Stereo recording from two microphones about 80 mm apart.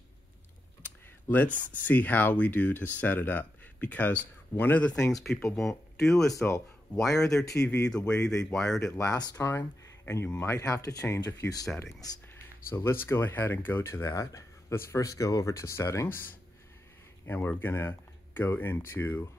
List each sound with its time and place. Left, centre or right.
1.3 s speech: left
4.8 s speech: centre
6.3 s speech: left
7.0 s speech: centre
7.5 s speech: left
7.9 s speech: centre
8.2 s speech: left
8.5 s speech: centre
8.9 s speech: left
10.6 s speech: left
11.1 s speech: left
12.7 s speech: left
13.8 s speech: left
17.3 s speech: left